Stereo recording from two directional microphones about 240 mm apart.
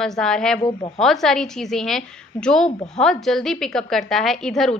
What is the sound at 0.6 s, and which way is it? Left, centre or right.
Speech, left.